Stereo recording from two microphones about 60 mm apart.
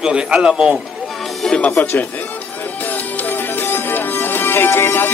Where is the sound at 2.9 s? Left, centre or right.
Left.